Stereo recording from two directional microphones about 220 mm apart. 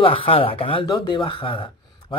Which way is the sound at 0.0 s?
25° left (ahead or behind).